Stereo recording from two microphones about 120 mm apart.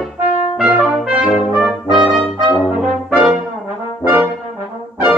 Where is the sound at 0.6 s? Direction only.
10° right (ahead or behind).